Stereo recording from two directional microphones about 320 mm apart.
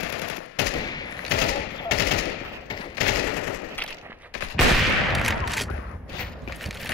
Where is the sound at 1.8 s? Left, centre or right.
Left.